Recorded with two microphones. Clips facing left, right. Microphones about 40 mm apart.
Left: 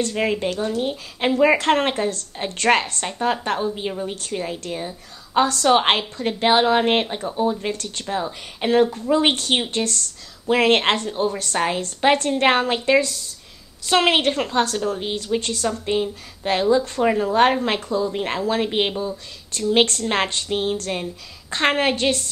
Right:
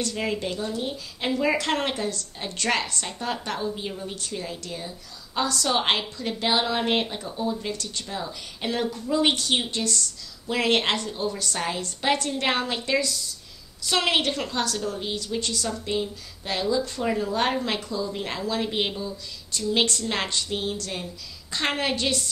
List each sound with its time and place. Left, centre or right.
0.0 s a woman's voice: left
7.7 s a woman's voice: left
19.5 s a woman's voice: left